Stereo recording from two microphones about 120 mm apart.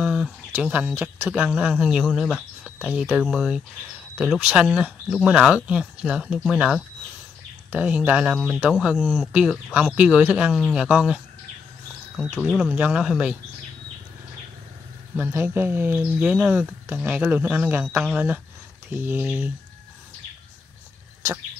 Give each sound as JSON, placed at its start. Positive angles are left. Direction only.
{"t": 0.0, "sound": "a sound", "side_deg": -10}
{"t": 1.1, "sound": "speech", "side_deg": -15}
{"t": 12.4, "sound": "speech", "side_deg": -5}
{"t": 15.1, "sound": "speech", "side_deg": -20}